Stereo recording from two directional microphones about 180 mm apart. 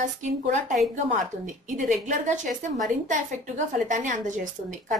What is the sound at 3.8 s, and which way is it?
A woman's voice, 45° right (ahead or behind).